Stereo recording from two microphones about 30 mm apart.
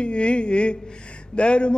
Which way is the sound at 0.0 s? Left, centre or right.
Left.